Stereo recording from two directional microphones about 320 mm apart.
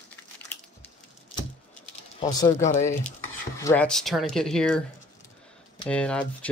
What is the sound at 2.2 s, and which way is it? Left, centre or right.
Speech, centre.